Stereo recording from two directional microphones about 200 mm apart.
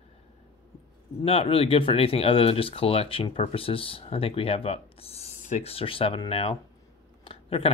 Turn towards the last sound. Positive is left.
turn(degrees=30)  # may be behind; listen again after turning